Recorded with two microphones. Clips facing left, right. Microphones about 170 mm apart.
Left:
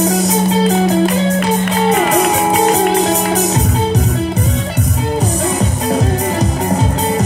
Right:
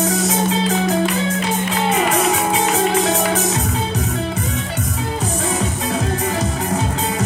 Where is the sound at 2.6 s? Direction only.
35° left (ahead or behind).